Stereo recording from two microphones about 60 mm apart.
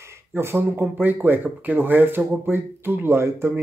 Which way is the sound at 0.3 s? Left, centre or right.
Right.